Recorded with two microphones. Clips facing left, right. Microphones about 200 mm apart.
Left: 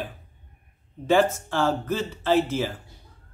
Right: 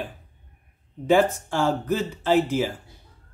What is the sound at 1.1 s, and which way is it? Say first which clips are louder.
Speech: right 1 dB; 15° right (ahead or behind).